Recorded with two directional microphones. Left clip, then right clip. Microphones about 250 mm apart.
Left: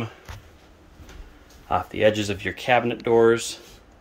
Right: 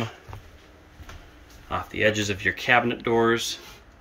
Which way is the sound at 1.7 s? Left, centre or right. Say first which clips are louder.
Left 3 dB; centre.